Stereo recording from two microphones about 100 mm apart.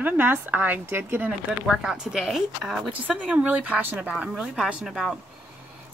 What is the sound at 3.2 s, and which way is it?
Speech, 10° right (ahead or behind).